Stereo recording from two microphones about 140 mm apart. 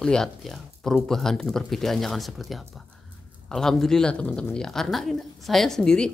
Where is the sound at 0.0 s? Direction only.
5° left (ahead or behind).